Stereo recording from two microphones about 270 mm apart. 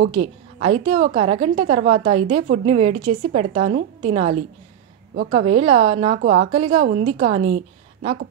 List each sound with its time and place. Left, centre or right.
0.2 s a woman's voice: right